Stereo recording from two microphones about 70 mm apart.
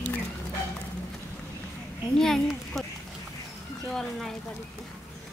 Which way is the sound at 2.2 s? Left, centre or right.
Centre.